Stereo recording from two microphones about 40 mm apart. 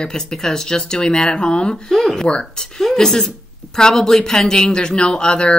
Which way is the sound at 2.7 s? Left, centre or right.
Centre.